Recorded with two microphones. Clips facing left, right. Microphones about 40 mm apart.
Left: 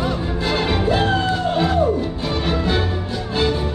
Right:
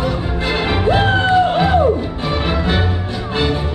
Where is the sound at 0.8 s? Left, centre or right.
Right.